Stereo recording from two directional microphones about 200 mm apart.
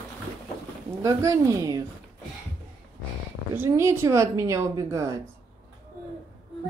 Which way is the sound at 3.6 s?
15° right (ahead or behind).